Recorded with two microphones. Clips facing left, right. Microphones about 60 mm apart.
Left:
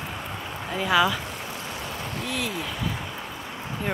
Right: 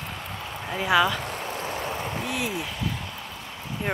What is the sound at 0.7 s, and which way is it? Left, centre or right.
Speech, centre.